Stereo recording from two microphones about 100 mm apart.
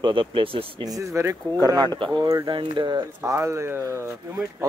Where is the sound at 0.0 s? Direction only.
60° right (ahead or behind).